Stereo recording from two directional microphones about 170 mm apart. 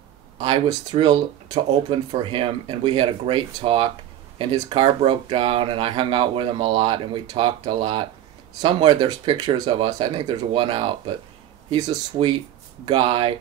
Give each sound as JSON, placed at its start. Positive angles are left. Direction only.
{"t": 0.4, "sound": "speech", "side_deg": -30}